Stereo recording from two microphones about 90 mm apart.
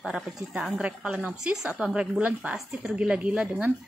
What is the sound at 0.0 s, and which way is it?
A woman's voice, 5° right (ahead or behind).